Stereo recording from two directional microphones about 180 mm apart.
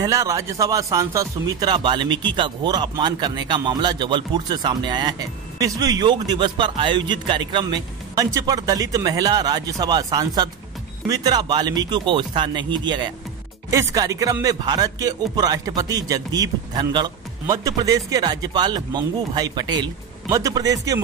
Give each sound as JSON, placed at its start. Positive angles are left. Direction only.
{"t": 0.0, "sound": "speech", "side_deg": -15}